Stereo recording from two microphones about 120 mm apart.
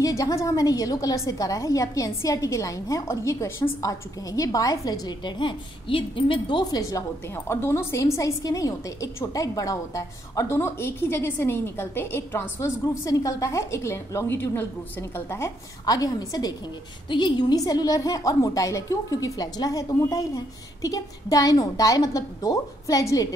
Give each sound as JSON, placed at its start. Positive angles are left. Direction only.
{"t": 0.0, "sound": "a woman's voice", "side_deg": 30}
{"t": 6.6, "sound": "a woman's voice", "side_deg": 30}
{"t": 15.8, "sound": "a woman's voice", "side_deg": 30}